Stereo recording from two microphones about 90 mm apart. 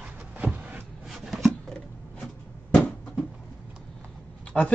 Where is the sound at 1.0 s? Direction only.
5° right (ahead or behind).